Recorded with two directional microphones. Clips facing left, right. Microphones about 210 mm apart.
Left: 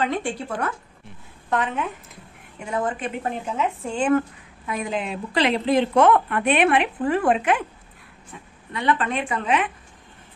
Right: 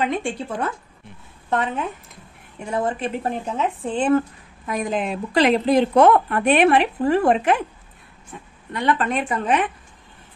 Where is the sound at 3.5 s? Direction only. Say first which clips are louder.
Right 1 dB; 35° right (ahead or behind).